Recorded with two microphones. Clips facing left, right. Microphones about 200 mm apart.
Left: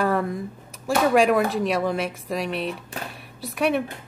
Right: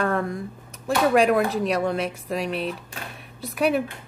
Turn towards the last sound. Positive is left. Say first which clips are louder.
# right 1 dB
turn(degrees=0)  # may be behind; listen again after turning